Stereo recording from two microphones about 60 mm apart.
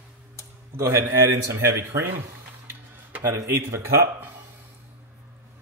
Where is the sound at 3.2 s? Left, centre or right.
Right.